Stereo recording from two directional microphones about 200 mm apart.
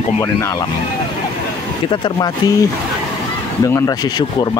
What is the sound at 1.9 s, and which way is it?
Speech, 20° left (ahead or behind).